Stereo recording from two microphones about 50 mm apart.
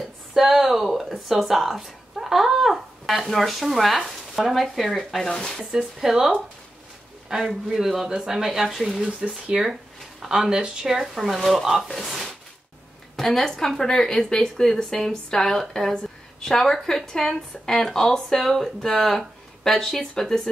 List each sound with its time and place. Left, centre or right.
0.0 s speech: centre
9.0 s a woman's voice: right; by 20.4 s centre